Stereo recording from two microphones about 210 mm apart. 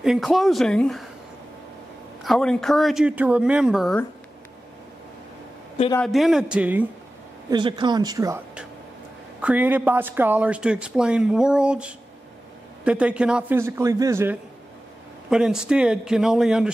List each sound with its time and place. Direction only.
0.0 s speech: centre (ahead or behind)
2.2 s speech: centre (ahead or behind)
6.0 s speech: centre (ahead or behind)
7.4 s speech: 20° right (ahead or behind)
9.4 s a man's voice: 5° right (ahead or behind)